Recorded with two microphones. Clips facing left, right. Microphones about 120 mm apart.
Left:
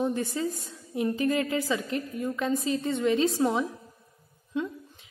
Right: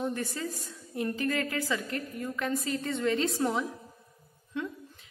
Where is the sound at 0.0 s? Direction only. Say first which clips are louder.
Left 5 dB; 20° left (ahead or behind).